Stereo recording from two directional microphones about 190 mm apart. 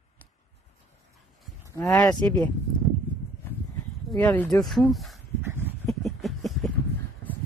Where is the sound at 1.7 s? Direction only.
15° left (ahead or behind).